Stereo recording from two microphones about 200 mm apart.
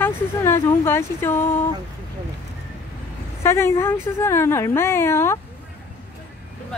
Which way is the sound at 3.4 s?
15° left (ahead or behind).